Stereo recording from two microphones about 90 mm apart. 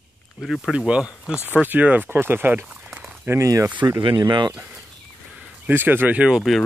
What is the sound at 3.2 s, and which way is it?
Speech, 30° right (ahead or behind).